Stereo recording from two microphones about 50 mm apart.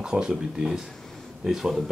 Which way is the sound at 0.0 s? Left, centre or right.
Centre.